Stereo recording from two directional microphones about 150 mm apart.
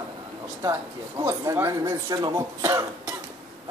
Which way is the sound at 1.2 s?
20° right (ahead or behind).